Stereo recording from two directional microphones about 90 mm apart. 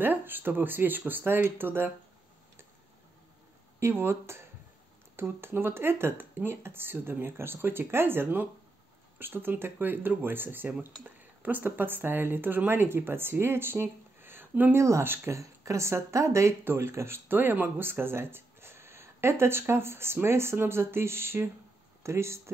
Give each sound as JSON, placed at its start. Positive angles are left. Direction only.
{"t": 0.0, "sound": "speech", "side_deg": -20}
{"t": 3.8, "sound": "speech", "side_deg": -25}
{"t": 14.8, "sound": "speech", "side_deg": -35}